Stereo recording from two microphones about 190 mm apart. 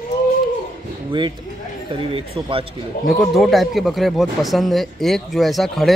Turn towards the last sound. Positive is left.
turn(degrees=0)  # may be behind; listen again after turning